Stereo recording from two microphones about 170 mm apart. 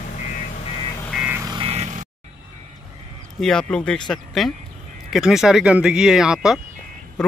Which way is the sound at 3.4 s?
5° left (ahead or behind).